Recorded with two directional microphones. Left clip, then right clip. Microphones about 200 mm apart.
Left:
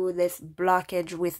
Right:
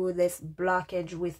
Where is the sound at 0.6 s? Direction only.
25° left (ahead or behind).